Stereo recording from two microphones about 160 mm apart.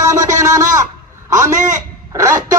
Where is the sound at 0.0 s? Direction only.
20° right (ahead or behind).